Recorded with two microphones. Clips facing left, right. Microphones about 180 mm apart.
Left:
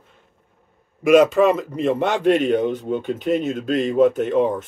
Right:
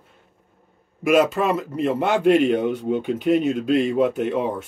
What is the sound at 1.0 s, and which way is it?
Speech, centre (ahead or behind).